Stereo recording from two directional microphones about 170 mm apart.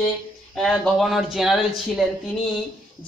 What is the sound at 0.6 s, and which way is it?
Speech, centre (ahead or behind).